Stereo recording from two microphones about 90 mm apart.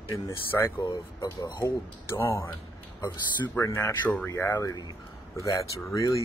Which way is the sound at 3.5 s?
30° left (ahead or behind).